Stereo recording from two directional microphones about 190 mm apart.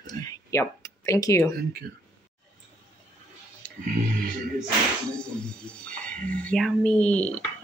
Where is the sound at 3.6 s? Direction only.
5° left (ahead or behind).